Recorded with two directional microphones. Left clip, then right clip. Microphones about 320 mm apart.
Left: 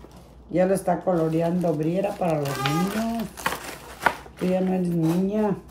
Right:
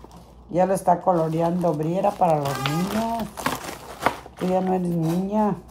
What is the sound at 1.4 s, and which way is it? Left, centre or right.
Speech, centre.